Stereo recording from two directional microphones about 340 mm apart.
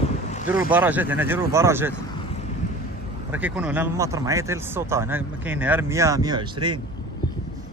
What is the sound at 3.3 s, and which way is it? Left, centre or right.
Speech, centre.